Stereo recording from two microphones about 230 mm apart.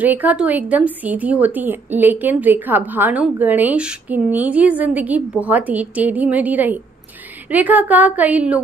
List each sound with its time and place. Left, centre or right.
0.0 s a woman's voice: centre